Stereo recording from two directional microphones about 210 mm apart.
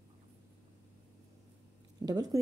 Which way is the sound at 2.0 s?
20° right (ahead or behind).